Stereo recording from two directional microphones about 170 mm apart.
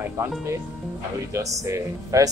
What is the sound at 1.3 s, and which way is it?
Speech, 20° right (ahead or behind).